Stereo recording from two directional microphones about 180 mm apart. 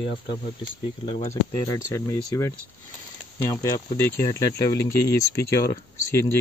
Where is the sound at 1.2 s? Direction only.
15° left (ahead or behind).